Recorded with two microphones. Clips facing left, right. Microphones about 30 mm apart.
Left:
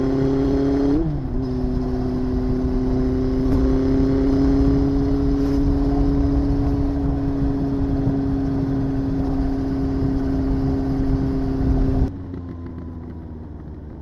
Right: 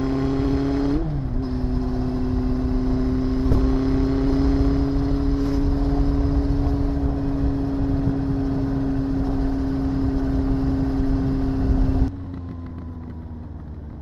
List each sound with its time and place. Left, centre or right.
0.0 s vehicle: centre
9.8 s vehicle: centre